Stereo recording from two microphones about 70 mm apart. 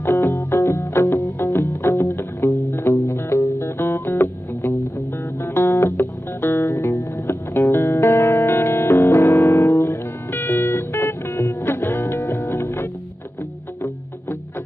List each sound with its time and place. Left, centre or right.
0.0 s music: left
7.0 s music: left
7.6 s music: left
9.4 s music: left
9.8 s music: left